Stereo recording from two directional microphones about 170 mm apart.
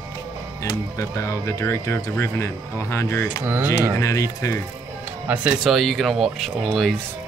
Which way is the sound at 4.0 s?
20° left (ahead or behind).